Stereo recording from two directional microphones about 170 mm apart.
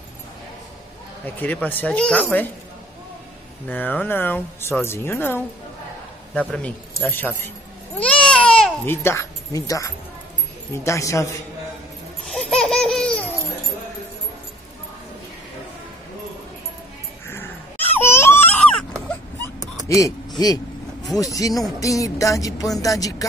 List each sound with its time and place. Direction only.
1.2 s speech: 10° left (ahead or behind)
3.6 s speech: 10° left (ahead or behind)
8.0 s babbling: 5° left (ahead or behind)
8.9 s speech: 15° left (ahead or behind)
12.3 s laughter: 5° left (ahead or behind)
17.3 s baby cry: 15° left (ahead or behind)
19.9 s a sound: 20° left (ahead or behind)
21.2 s speech: 20° left (ahead or behind)